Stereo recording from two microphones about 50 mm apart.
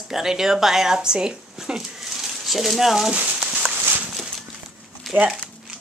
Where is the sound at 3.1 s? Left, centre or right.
Right.